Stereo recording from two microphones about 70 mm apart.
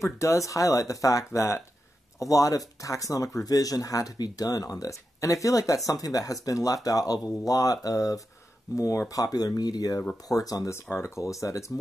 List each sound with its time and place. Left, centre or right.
0.0 s speech: left
9.1 s speech: left
10.7 s speech: left